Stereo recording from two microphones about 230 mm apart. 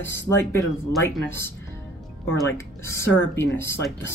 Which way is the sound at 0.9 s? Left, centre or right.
Centre.